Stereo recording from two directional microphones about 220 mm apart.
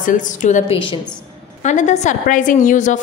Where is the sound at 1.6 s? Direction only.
35° left (ahead or behind).